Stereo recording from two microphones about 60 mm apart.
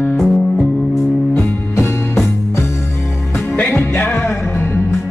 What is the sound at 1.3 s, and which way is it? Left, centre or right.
Music, left.